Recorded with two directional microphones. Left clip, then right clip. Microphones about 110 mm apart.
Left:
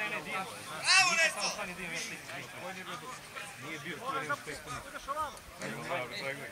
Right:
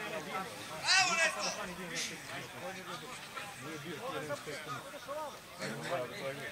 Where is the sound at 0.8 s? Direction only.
10° left (ahead or behind).